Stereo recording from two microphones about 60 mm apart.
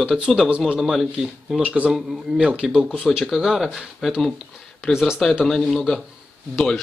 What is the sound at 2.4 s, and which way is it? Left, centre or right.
Speech, centre.